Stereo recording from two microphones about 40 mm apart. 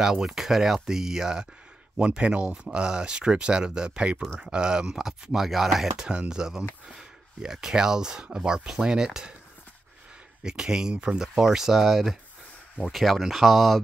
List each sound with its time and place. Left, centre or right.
0.0 s speech: centre
2.0 s speech: right; by 6.0 s centre
6.0 s speech: right
10.4 s speech: centre
11.3 s speech: centre